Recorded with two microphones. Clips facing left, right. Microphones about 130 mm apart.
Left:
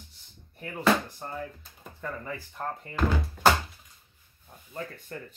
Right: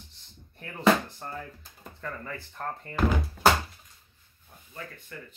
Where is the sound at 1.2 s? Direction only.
10° left (ahead or behind).